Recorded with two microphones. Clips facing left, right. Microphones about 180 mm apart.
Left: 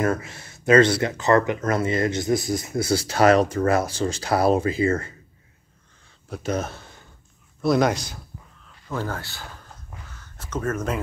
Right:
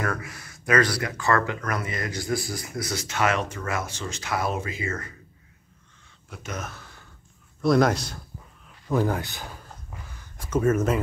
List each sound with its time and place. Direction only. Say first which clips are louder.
0.0 s speech: left 6 dB; 25° left (ahead or behind)
6.3 s speech: left 9 dB; 35° left (ahead or behind)
7.6 s a man's voice: even; centre (ahead or behind)
8.6 s speech: right 5 dB; 15° right (ahead or behind)
10.0 s a sound: even; 15° right (ahead or behind)